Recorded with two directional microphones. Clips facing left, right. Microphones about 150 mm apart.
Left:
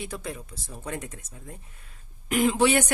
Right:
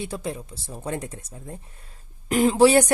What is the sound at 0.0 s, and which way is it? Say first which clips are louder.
Speech: right 5 dB; 30° right (ahead or behind).